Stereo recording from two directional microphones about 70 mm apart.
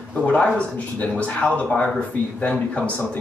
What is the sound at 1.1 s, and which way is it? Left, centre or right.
Speech, centre.